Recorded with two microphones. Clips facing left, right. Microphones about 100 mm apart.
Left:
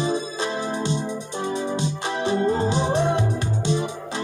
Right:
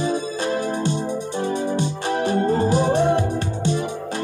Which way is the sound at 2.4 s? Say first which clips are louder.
Right 1 dB; 20° left (ahead or behind).